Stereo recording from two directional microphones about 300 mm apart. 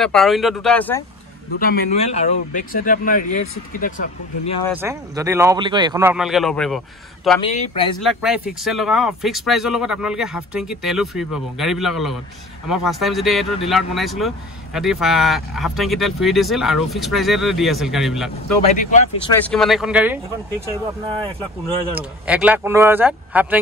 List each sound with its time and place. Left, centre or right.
0.0 s speech: centre
1.6 s speech: left
4.7 s speech: centre
7.4 s speech: centre
8.0 s speech: centre
18.6 s speech: left
19.3 s speech: centre
21.9 s speech: centre